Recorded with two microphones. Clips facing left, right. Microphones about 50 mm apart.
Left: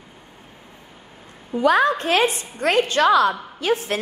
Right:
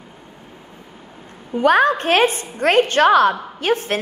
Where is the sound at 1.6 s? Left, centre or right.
Right.